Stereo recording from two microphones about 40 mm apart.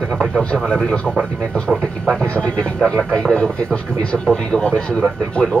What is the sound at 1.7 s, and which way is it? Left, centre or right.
Speech, centre.